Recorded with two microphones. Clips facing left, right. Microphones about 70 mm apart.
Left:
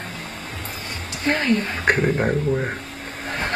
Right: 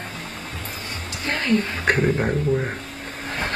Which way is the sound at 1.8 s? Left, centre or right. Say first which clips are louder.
Left 1 dB; centre.